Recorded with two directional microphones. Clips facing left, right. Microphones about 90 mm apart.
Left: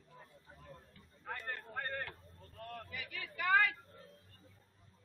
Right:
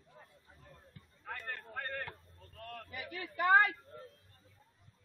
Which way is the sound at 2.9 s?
45° right (ahead or behind).